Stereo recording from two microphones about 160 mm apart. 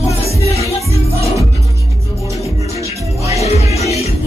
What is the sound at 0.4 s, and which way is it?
Music, 40° left (ahead or behind).